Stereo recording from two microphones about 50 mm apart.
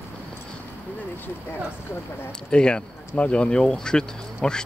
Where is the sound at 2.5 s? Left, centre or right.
Centre.